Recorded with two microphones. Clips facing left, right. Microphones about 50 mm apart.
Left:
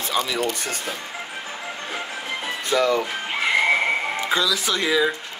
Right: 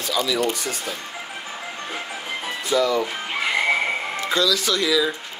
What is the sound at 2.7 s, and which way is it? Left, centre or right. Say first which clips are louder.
Speech: even; left.